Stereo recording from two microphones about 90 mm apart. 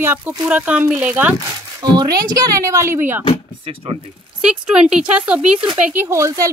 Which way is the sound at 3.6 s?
85° right.